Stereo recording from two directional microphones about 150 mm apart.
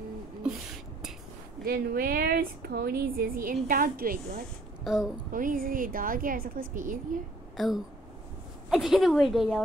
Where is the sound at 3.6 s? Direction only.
70° right (ahead or behind).